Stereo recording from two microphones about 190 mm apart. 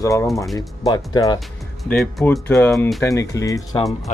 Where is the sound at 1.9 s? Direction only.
5° left (ahead or behind).